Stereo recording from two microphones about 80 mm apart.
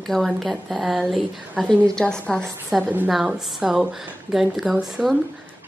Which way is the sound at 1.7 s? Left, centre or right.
Centre.